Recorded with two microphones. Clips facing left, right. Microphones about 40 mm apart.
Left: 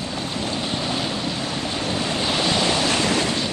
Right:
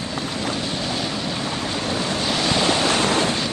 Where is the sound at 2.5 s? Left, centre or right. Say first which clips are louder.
Right 1 dB; right.